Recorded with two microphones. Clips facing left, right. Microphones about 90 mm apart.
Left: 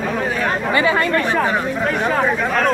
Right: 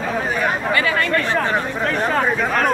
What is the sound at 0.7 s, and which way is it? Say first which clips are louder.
Speech: left 5 dB; 25° left (ahead or behind).